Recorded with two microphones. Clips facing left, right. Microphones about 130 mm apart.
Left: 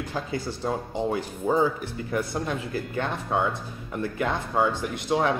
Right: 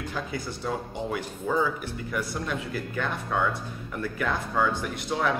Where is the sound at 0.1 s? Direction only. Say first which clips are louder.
Left 3 dB; 30° left (ahead or behind).